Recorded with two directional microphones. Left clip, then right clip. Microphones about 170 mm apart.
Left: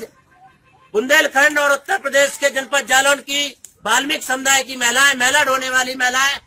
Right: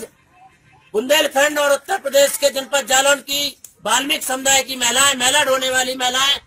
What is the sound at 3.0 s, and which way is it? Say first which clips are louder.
Speech: even; 30° right (ahead or behind).